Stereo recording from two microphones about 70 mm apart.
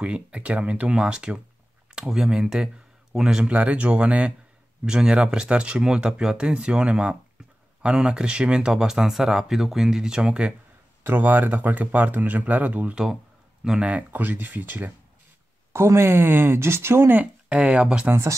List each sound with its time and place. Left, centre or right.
0.0 s speech: centre
3.5 s speech: centre
11.1 s speech: right
12.9 s speech: centre; by 15.0 s right
15.7 s speech: right
17.2 s speech: centre